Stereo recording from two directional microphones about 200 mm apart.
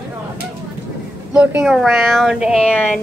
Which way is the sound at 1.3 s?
5° right (ahead or behind).